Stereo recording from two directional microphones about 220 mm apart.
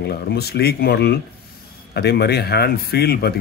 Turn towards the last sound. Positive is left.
turn(degrees=45)  # may be behind; listen again after turning